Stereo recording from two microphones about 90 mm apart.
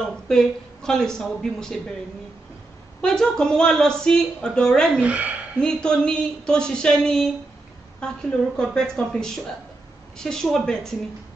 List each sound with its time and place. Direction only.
0.3 s speech: 5° left (ahead or behind)
3.0 s a woman's voice: 10° left (ahead or behind)
5.0 s speech: 15° right (ahead or behind)
5.6 s a woman's voice: 10° left (ahead or behind)
8.5 s a woman's voice: 5° left (ahead or behind)